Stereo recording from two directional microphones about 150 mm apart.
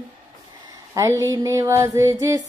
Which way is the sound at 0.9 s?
20° right (ahead or behind).